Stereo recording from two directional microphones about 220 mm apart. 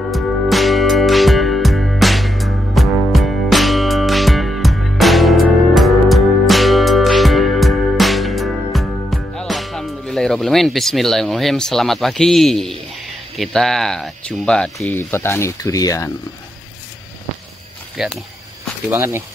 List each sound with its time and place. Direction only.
0.1 s music: centre (ahead or behind)
13.4 s speech: centre (ahead or behind)
17.9 s speech: centre (ahead or behind)